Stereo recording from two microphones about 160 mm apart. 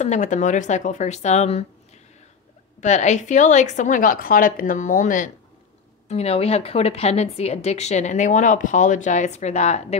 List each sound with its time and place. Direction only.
0.0 s a woman's voice: 50° left (ahead or behind)
2.8 s a woman's voice: 45° left (ahead or behind)
6.0 s a woman's voice: 40° left (ahead or behind)